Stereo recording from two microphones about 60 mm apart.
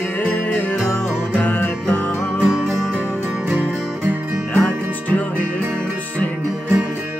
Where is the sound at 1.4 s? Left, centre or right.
Left.